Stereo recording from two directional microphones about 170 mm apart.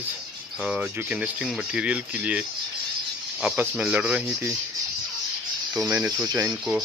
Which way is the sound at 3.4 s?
5° right (ahead or behind).